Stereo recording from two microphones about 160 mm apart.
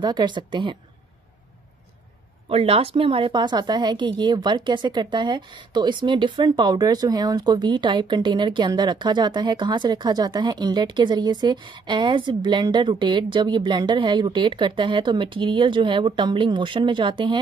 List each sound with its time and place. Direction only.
0.0 s a woman's voice: 30° right (ahead or behind)
2.5 s a woman's voice: 35° right (ahead or behind)